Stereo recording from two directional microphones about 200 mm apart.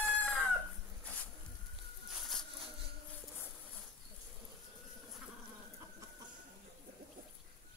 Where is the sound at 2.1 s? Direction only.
Centre (ahead or behind).